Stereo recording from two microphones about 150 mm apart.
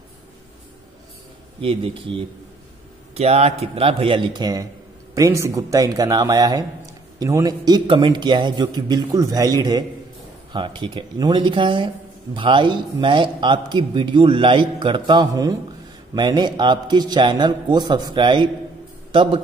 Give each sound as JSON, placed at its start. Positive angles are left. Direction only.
{"t": 1.6, "sound": "a man's voice", "side_deg": -35}